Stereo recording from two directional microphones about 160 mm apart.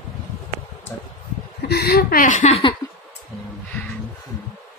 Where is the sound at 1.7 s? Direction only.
75° left (ahead or behind); by 2.7 s 40° left (ahead or behind).